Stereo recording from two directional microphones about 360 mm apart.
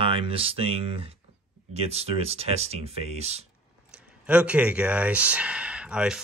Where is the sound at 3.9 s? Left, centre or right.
Centre.